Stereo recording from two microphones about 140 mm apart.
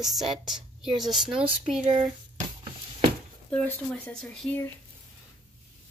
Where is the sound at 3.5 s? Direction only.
10° left (ahead or behind).